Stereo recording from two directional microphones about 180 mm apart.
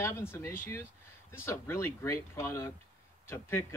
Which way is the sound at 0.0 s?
15° left (ahead or behind).